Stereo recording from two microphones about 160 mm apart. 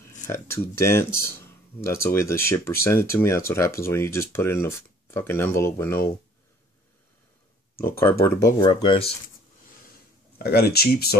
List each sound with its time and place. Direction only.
0.3 s speech: 15° left (ahead or behind)
7.8 s speech: 15° left (ahead or behind)
8.5 s speech: 30° left (ahead or behind)
10.4 s speech: 80° left